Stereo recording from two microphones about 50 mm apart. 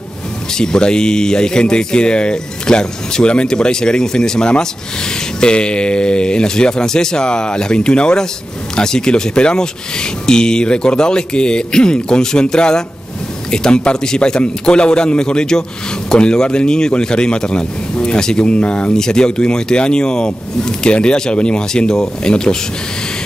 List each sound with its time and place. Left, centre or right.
0.6 s speech: centre